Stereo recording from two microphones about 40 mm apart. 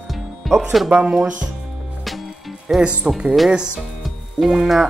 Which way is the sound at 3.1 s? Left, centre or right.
Centre.